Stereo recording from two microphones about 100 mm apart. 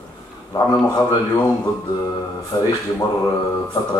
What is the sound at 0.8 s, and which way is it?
Speech, 40° left (ahead or behind).